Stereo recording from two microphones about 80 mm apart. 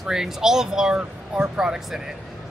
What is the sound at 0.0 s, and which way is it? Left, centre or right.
A man's voice, centre.